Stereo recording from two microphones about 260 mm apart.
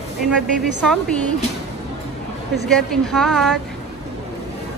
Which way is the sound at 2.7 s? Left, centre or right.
Centre.